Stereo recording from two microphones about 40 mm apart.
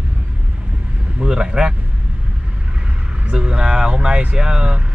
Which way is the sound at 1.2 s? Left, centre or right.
Centre.